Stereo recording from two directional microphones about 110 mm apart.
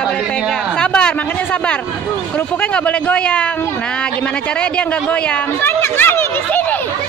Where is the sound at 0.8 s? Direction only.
10° left (ahead or behind).